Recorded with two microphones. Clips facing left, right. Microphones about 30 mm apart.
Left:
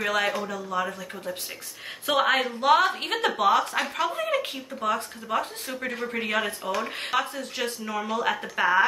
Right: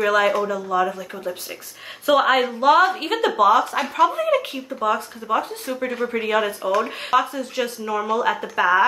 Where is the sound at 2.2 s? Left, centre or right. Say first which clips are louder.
Right 5 dB; centre.